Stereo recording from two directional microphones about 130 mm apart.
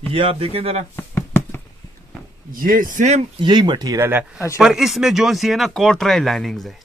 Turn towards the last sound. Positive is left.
turn(degrees=0)  # may be behind; listen again after turning